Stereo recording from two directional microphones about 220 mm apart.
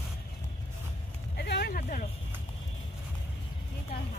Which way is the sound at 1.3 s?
45° left (ahead or behind).